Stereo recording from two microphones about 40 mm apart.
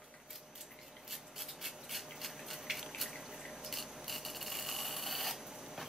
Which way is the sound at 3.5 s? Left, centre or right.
Centre.